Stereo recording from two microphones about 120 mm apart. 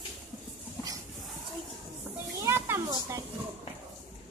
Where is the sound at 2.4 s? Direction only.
20° right (ahead or behind).